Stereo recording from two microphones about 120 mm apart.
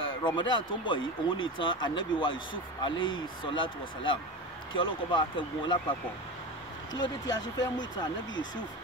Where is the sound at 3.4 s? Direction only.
45° left (ahead or behind).